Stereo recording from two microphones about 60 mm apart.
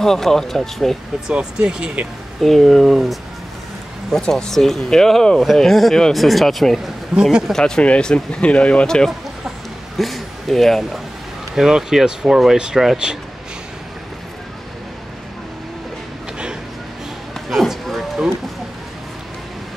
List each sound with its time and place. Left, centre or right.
0.0 s speech: centre
1.3 s speech: centre
2.4 s speech: centre
7.2 s speech: centre
7.5 s speech: centre
9.9 s speech: centre
17.5 s a sound: centre